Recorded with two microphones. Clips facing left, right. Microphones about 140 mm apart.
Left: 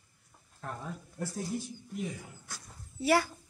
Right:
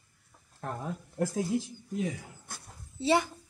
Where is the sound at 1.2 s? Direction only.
90° right.